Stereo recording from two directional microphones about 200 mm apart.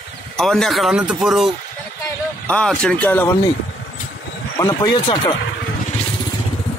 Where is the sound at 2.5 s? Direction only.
5° left (ahead or behind).